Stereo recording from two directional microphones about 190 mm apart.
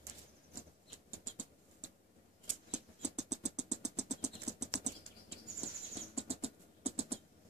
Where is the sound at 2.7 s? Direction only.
35° right (ahead or behind).